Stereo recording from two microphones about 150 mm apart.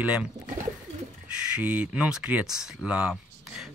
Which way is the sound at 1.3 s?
5° right (ahead or behind).